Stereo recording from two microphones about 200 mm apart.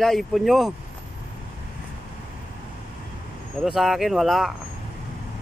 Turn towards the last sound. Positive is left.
turn(degrees=0)  # may be behind; listen again after turning